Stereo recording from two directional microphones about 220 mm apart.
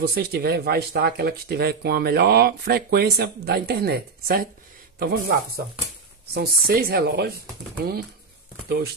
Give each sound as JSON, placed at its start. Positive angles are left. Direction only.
{"t": 0.0, "sound": "speech", "side_deg": -45}
{"t": 6.3, "sound": "speech", "side_deg": -45}
{"t": 8.6, "sound": "speech", "side_deg": -45}